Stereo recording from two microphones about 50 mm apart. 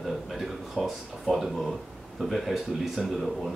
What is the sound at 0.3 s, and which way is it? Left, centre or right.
Speech, centre.